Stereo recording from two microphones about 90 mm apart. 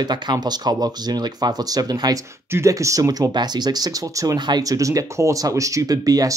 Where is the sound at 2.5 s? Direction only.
35° right (ahead or behind).